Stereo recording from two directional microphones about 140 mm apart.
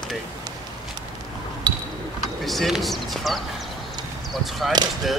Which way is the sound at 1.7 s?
30° right (ahead or behind).